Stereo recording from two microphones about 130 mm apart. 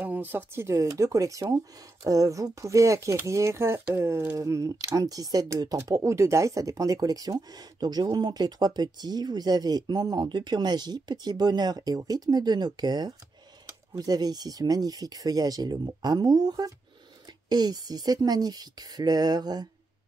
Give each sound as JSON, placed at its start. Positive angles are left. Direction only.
{"t": 0.0, "sound": "speech", "side_deg": -15}